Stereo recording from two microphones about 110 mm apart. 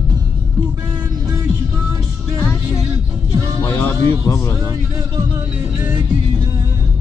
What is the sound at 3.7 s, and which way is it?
Music, 20° left (ahead or behind).